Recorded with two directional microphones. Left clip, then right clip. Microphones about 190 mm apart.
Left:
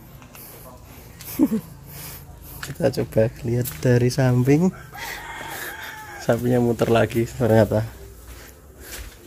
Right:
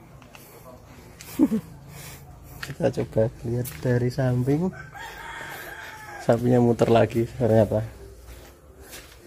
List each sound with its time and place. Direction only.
2.6 s speech: centre (ahead or behind)
3.8 s speech: 25° left (ahead or behind)
6.2 s speech: 10° right (ahead or behind)